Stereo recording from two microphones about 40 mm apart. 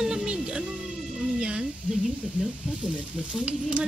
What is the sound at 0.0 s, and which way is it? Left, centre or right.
Music, centre.